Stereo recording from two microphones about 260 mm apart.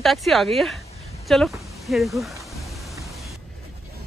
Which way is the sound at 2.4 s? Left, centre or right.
Centre.